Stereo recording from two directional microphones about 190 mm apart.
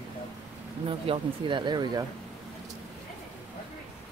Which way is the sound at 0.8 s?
30° right (ahead or behind).